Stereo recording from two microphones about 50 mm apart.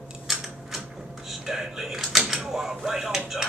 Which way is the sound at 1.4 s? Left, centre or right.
Centre.